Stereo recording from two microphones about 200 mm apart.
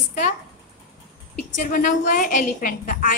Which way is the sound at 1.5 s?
40° left (ahead or behind).